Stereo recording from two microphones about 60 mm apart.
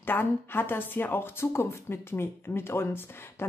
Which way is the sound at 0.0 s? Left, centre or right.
Left.